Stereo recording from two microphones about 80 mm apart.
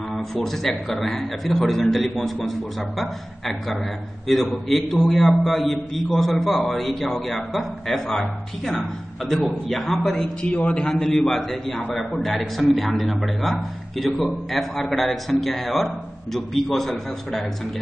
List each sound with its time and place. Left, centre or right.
0.1 s a man's voice: centre